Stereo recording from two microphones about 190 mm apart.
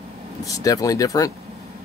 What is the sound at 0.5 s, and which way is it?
Speech, 20° left (ahead or behind).